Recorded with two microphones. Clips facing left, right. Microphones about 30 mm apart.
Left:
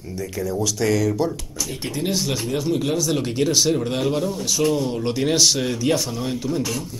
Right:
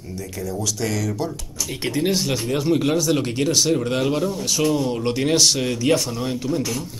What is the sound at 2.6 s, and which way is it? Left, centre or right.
Speech, centre.